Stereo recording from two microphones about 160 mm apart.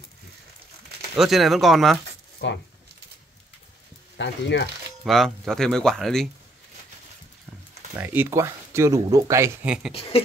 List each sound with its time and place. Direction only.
1.1 s speech: centre (ahead or behind)
2.4 s speech: 90° left
4.2 s speech: 90° left
5.0 s speech: centre (ahead or behind)
7.9 s speech: 15° right (ahead or behind)
9.9 s speech: 35° left (ahead or behind)